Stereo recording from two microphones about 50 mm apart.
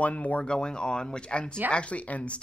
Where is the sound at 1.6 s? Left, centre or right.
Right.